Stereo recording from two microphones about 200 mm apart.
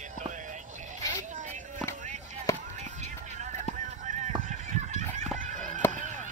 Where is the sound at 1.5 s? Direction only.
40° right (ahead or behind).